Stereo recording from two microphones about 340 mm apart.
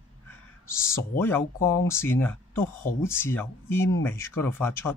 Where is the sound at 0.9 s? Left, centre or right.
Centre.